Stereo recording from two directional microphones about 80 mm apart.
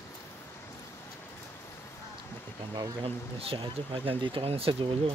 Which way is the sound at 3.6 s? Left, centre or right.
Right.